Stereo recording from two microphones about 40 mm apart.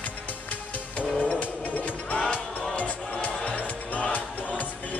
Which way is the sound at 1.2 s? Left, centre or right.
Left.